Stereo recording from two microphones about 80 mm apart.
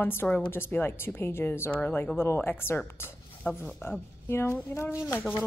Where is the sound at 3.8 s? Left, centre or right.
Left.